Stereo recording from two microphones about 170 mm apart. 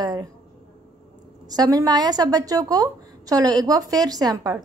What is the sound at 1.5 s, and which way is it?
A woman's voice, 20° right (ahead or behind).